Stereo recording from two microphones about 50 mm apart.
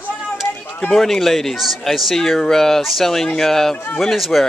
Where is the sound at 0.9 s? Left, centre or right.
Centre.